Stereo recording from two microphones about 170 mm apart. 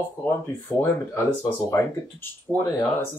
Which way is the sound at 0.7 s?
15° left (ahead or behind).